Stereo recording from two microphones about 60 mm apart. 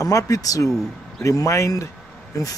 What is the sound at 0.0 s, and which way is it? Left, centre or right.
Speech, left.